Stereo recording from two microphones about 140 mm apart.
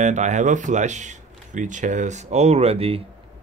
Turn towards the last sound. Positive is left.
turn(degrees=-45)  # may be behind; listen again after turning